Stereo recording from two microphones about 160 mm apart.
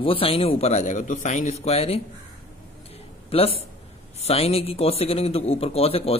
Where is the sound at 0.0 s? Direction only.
35° left (ahead or behind).